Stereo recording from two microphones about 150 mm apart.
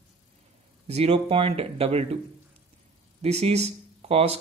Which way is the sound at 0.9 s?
40° right (ahead or behind).